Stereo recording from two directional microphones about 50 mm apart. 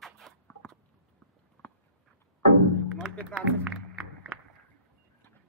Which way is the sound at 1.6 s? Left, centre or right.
Left.